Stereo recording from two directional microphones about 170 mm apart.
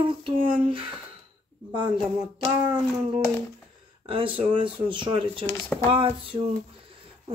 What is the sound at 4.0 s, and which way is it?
Speech, 30° right (ahead or behind).